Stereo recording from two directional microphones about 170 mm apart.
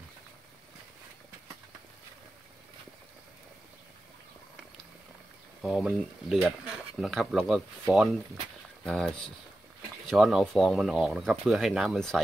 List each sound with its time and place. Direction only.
5.6 s speech: centre (ahead or behind)